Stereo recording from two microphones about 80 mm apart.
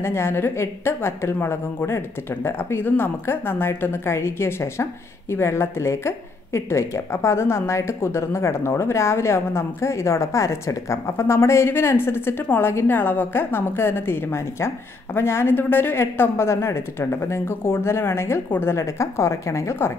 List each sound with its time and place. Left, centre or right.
0.0 s a woman's voice: left